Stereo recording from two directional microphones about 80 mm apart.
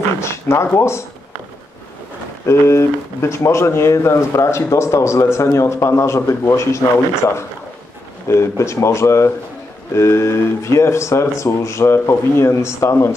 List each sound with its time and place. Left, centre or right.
0.2 s a sound: left
0.7 s speech: left
2.4 s speech: left
8.3 s speech: left